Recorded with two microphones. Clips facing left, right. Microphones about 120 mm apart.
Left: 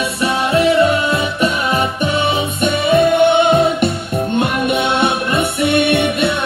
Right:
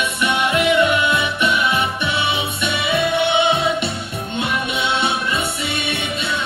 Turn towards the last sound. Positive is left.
turn(degrees=60)  # may be behind; listen again after turning